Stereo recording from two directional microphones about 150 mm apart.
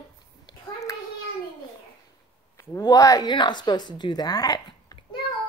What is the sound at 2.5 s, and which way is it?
Speech, 20° left (ahead or behind).